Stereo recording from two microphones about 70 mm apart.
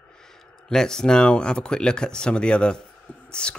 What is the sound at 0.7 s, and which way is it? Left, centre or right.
Speech, centre.